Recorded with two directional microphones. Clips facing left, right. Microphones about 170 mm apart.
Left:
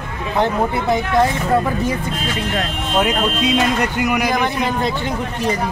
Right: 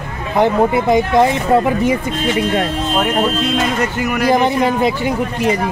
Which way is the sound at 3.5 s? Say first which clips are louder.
Even; centre (ahead or behind).